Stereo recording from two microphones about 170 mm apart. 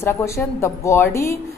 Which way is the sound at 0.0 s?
15° left (ahead or behind).